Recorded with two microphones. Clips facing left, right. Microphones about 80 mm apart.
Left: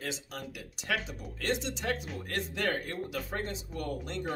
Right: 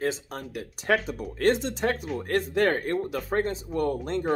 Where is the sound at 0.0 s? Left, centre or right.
Right.